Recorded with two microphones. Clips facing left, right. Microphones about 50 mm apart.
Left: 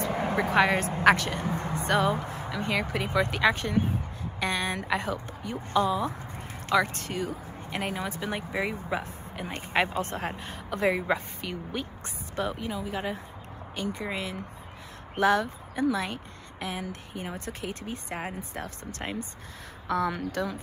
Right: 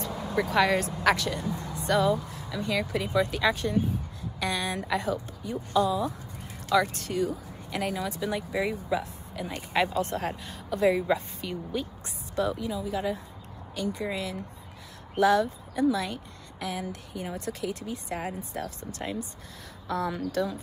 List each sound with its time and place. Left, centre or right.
0.0 s speech: left